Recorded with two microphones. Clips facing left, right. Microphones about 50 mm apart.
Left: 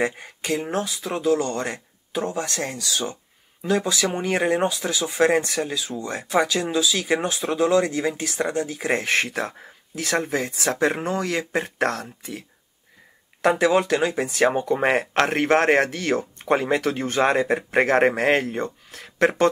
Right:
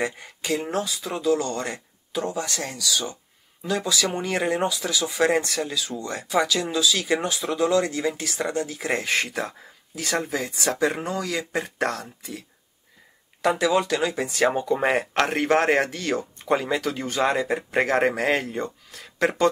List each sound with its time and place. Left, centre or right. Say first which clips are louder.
0.0 s speech: left 3 dB; left
6.2 s speech: left 1 dB; left
9.0 s speech: left 2 dB; left
15.2 s speech: left 2 dB; left